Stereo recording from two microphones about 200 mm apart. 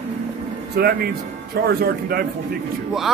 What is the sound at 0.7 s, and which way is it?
A man's voice, 50° right (ahead or behind).